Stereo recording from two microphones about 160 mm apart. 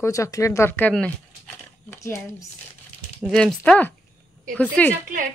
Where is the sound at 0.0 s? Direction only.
20° left (ahead or behind).